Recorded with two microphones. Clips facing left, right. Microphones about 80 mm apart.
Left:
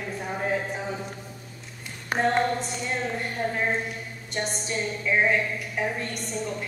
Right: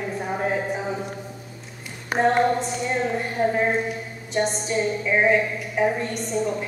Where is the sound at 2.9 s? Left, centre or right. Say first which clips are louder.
Right 4 dB; centre.